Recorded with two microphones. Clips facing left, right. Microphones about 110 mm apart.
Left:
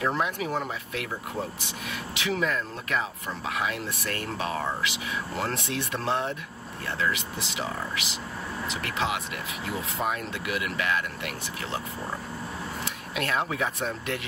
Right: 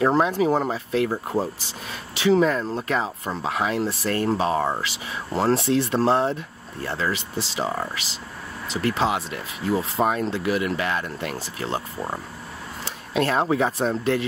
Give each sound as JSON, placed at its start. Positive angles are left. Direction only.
{"t": 0.0, "sound": "speech", "side_deg": -35}
{"t": 12.8, "sound": "speech", "side_deg": -30}